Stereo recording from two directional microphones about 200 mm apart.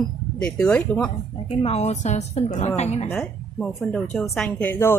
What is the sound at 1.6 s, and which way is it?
A woman's voice, 30° left (ahead or behind).